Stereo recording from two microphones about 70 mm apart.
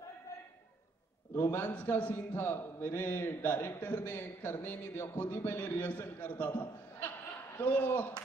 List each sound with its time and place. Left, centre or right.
1.3 s a man's voice: left